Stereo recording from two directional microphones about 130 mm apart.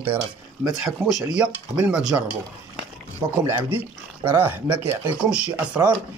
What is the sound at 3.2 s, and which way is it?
Speech, 20° right (ahead or behind).